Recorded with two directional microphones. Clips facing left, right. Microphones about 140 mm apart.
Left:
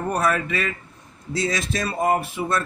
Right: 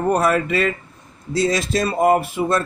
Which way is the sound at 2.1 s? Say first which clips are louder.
Right 5 dB; 40° right (ahead or behind).